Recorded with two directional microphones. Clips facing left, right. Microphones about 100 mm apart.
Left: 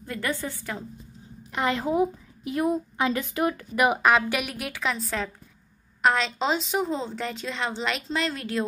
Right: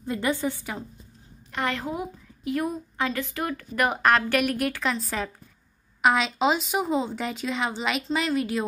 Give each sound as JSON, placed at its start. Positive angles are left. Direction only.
{"t": 0.0, "sound": "a woman's voice", "side_deg": -20}
{"t": 1.5, "sound": "a woman's voice", "side_deg": 20}